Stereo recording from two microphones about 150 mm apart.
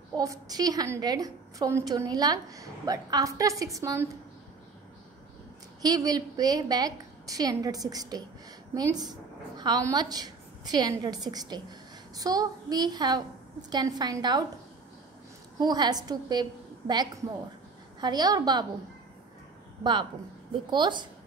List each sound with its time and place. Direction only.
0.2 s a woman's voice: 25° right (ahead or behind)
5.8 s a woman's voice: 25° right (ahead or behind)
15.6 s a woman's voice: 25° right (ahead or behind)
19.8 s speech: 30° right (ahead or behind)